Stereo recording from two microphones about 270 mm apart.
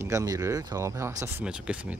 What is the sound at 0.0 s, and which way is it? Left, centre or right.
Speech, centre.